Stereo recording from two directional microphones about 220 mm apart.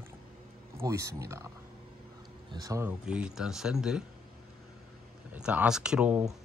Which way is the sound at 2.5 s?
15° right (ahead or behind).